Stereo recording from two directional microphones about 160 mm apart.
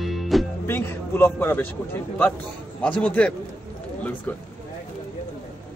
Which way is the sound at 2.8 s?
10° left (ahead or behind).